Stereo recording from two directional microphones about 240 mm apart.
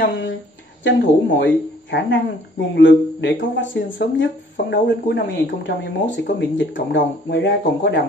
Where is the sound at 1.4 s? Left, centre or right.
Left.